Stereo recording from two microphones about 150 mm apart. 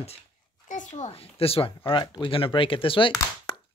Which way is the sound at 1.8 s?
30° left (ahead or behind).